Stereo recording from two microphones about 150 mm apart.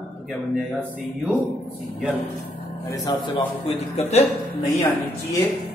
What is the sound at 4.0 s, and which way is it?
Speech, 45° left (ahead or behind).